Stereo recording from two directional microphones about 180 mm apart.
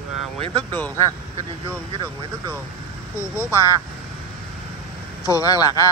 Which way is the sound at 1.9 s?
20° right (ahead or behind).